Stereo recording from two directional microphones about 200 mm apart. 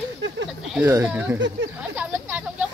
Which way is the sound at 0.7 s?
10° right (ahead or behind).